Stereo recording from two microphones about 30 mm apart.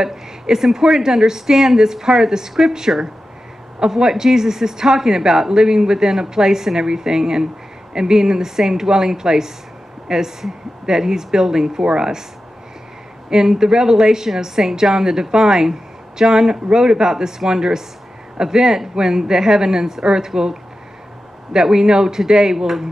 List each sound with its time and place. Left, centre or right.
0.0 s a woman's voice: centre
13.6 s speech: right
21.5 s speech: right